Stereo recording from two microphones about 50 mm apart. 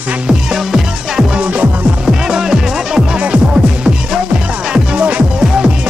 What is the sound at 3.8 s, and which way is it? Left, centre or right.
Music, centre.